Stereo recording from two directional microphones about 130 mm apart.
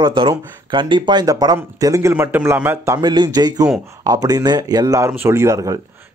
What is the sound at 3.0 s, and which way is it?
A man's voice, 35° right (ahead or behind).